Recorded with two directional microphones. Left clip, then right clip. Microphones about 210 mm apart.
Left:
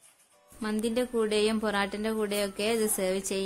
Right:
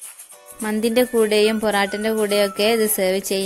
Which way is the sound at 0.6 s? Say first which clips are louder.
Right 11 dB; 30° right (ahead or behind).